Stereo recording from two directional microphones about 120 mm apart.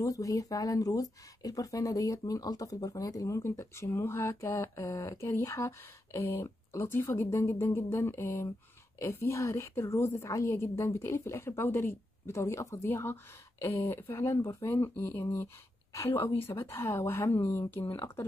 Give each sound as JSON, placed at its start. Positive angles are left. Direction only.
{"t": 0.0, "sound": "a woman's voice", "side_deg": 25}